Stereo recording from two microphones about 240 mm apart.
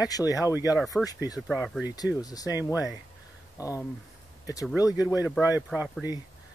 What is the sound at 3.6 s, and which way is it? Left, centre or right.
Speech, centre.